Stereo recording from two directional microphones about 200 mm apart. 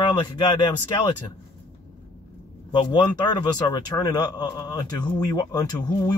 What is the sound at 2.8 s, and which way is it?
A man's voice, 20° left (ahead or behind).